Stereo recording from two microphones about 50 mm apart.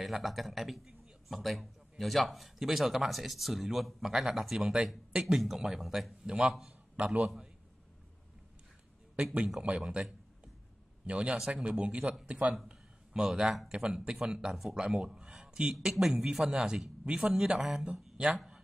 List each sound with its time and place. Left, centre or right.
0.0 s a man's voice: centre
9.8 s a sound: centre
11.1 s speech: centre
12.6 s speech: centre
13.7 s a man's voice: centre
14.5 s a man's voice: centre